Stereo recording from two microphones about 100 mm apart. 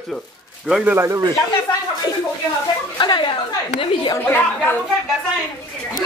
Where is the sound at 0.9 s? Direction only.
25° right (ahead or behind).